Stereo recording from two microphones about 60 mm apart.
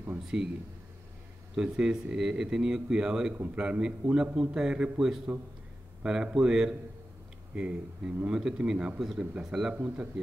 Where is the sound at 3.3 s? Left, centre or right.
Right.